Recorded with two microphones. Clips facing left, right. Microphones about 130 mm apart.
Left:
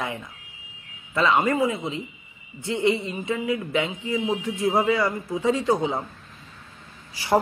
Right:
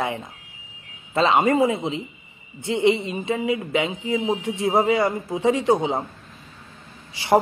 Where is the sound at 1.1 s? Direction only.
25° right (ahead or behind).